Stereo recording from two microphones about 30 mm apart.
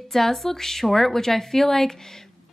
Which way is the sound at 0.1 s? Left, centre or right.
Centre.